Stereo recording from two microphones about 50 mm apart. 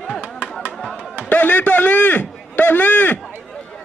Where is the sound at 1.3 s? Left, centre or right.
Left.